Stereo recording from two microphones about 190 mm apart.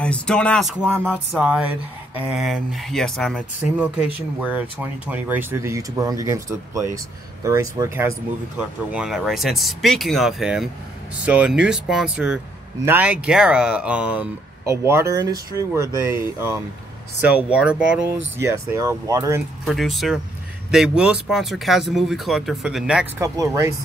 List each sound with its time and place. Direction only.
0.0 s speech: 5° left (ahead or behind); by 8.1 s 15° right (ahead or behind)
8.5 s speech: 5° right (ahead or behind)
17.2 s speech: 5° right (ahead or behind)
19.6 s speech: centre (ahead or behind)
23.2 s speech: 15° right (ahead or behind)